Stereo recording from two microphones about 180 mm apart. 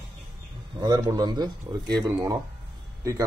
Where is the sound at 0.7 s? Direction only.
20° right (ahead or behind).